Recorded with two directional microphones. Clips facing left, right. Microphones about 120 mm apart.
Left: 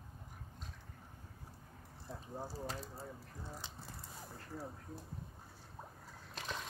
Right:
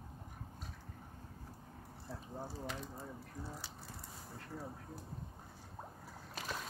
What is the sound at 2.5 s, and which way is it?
Speech, 35° left (ahead or behind).